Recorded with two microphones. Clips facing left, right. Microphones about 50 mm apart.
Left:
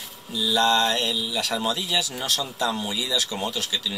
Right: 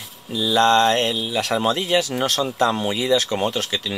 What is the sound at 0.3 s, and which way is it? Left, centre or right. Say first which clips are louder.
Speech: right 5 dB; right.